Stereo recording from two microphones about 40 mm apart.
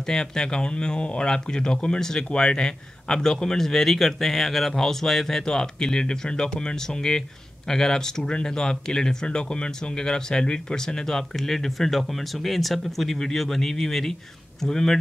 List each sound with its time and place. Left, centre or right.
0.0 s speech: centre